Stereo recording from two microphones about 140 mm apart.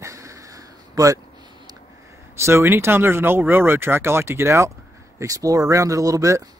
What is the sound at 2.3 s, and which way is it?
Speech, 20° right (ahead or behind).